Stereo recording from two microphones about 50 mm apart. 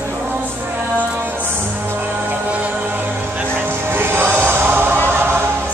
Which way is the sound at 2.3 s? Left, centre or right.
Right.